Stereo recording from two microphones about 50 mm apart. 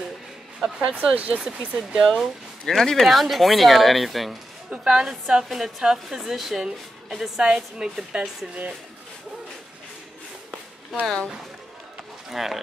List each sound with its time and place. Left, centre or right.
0.6 s speech: centre
1.1 s speech: right
1.4 s a woman's voice: centre
2.6 s speech: centre
4.8 s a woman's voice: centre
12.3 s speech: centre